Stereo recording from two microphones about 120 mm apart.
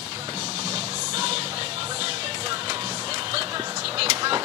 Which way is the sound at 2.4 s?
40° right (ahead or behind).